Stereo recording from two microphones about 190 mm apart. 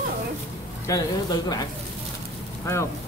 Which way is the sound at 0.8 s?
20° left (ahead or behind).